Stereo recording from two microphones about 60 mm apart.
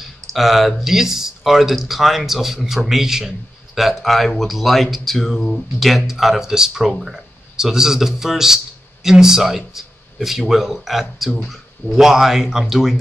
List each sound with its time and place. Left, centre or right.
0.3 s speech: centre